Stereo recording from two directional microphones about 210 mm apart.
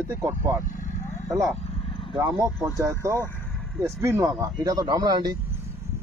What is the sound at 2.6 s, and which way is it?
Speech, 15° right (ahead or behind).